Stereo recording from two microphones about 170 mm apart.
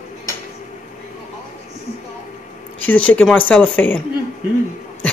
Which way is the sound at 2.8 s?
10° left (ahead or behind).